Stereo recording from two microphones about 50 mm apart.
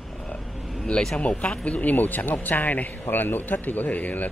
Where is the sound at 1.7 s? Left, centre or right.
Left.